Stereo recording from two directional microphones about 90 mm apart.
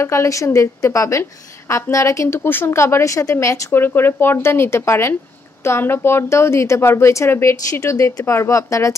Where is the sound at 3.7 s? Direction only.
25° left (ahead or behind).